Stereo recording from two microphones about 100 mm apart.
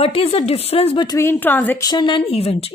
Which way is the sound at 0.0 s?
70° left (ahead or behind).